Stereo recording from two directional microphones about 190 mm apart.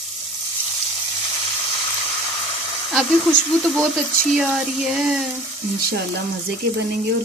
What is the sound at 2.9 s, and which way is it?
Speech, centre (ahead or behind).